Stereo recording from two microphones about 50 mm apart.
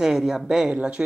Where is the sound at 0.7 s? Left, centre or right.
Right.